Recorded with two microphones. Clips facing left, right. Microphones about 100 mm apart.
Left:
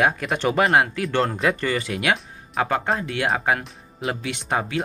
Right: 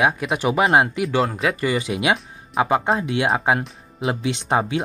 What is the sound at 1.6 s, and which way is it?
Speech, 15° right (ahead or behind).